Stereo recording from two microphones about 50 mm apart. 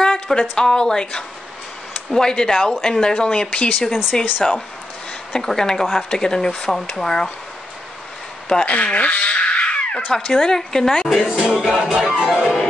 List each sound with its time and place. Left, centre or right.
0.0 s a woman's voice: centre
8.5 s speech: centre
11.2 s music: centre